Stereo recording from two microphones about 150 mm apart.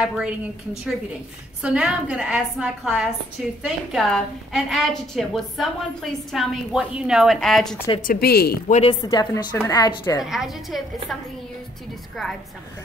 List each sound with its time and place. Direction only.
0.0 s a woman's voice: 5° right (ahead or behind)
8.0 s a woman's voice: 80° left
9.0 s a woman's voice: 25° left (ahead or behind)
10.3 s a woman's voice: centre (ahead or behind)
12.2 s a woman's voice: centre (ahead or behind)